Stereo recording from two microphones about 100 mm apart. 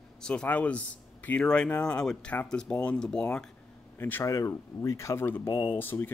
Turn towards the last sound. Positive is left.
turn(degrees=20)  # may be behind; listen again after turning